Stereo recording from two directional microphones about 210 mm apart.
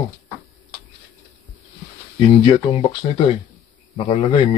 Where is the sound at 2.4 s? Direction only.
25° left (ahead or behind).